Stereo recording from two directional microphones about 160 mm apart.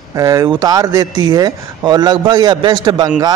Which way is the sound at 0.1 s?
20° right (ahead or behind).